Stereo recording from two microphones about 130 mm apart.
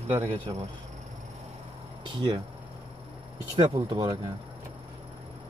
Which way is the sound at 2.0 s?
40° right (ahead or behind).